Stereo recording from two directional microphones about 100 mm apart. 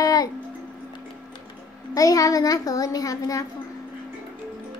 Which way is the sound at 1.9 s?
35° left (ahead or behind).